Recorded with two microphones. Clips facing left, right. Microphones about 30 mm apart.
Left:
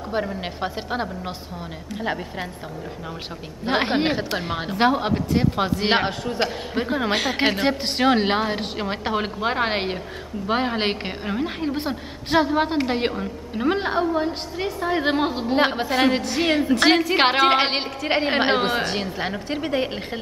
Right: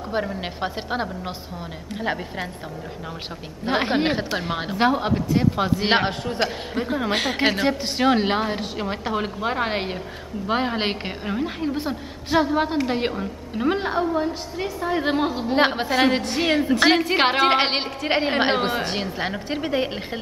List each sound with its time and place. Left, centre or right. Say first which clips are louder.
0.1 s a woman's voice: even; centre
3.6 s a woman's voice: even; centre
4.7 s a woman's voice: left 1 dB; centre
5.8 s a woman's voice: even; centre
6.7 s a woman's voice: left 1 dB; centre
10.4 s a woman's voice: left 1 dB; centre
11.7 s a woman's voice: even; centre
13.7 s a woman's voice: left 1 dB; centre
15.5 s a woman's voice: right 1 dB; centre
16.4 s a woman's voice: even; centre